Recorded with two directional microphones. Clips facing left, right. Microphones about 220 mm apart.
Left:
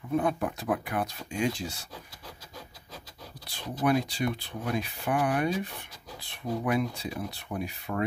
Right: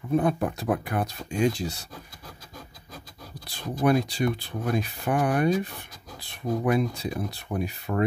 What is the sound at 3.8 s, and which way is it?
Speech, 40° right (ahead or behind).